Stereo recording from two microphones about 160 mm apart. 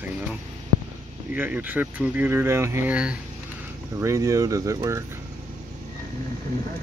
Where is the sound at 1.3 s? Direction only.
10° right (ahead or behind).